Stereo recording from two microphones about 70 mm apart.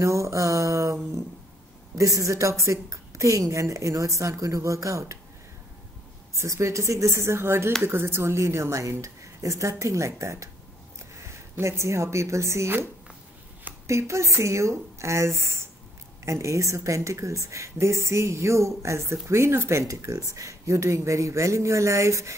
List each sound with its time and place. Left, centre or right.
0.0 s a woman's voice: right
2.0 s a woman's voice: right
6.3 s a woman's voice: right
11.5 s a woman's voice: right
13.8 s a woman's voice: right